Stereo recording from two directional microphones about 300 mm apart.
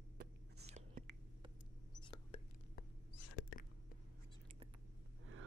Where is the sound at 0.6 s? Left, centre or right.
Right.